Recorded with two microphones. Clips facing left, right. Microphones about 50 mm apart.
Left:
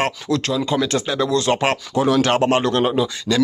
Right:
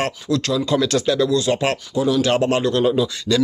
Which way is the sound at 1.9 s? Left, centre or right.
Left.